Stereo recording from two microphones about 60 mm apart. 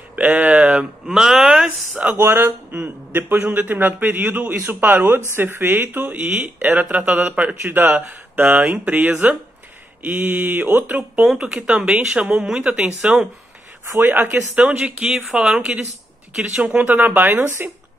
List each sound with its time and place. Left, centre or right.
0.1 s speech: right
1.0 s speech: centre
2.1 s a man's voice: right
10.2 s a man's voice: right
11.3 s speech: centre
13.9 s a man's voice: right
14.5 s speech: right
16.7 s a man's voice: right